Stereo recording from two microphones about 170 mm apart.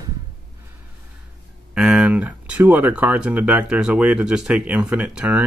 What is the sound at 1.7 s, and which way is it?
Speech, 5° right (ahead or behind).